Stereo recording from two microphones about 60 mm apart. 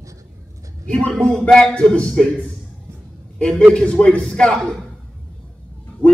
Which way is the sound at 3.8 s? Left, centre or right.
Centre.